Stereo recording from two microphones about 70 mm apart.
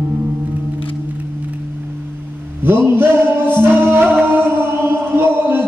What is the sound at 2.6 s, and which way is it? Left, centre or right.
Music, right.